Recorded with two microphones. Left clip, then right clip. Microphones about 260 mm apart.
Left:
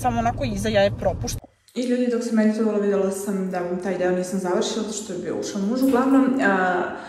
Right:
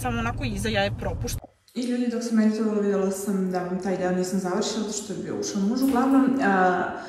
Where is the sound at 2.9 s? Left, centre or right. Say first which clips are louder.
Left 3 dB; centre.